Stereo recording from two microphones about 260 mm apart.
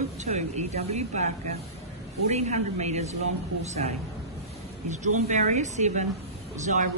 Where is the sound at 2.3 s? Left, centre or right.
Right.